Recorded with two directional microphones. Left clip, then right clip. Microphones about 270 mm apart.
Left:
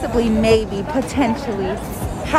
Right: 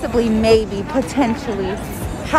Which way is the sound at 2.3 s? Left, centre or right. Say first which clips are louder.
Right 1 dB; centre.